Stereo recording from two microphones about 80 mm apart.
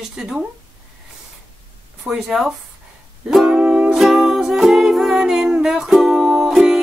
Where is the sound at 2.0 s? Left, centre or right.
Centre.